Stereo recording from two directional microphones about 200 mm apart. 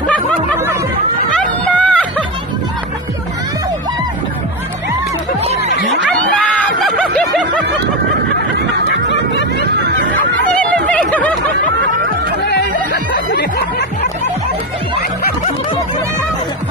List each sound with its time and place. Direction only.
0.1 s snicker: 5° left (ahead or behind)
1.3 s music: 5° left (ahead or behind)
6.8 s snicker: centre (ahead or behind)
9.1 s snicker: 65° left (ahead or behind)
10.5 s snicker: 5° left (ahead or behind)
12.4 s music: 55° left (ahead or behind)